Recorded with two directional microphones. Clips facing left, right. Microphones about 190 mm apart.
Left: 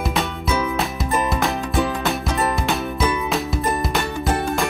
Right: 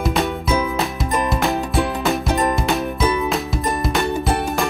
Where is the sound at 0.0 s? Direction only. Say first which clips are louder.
Right 3 dB; centre (ahead or behind).